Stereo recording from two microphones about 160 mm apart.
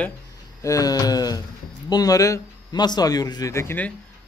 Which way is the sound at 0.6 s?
20° left (ahead or behind).